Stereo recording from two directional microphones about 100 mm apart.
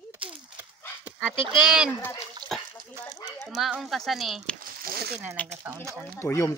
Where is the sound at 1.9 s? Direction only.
20° left (ahead or behind).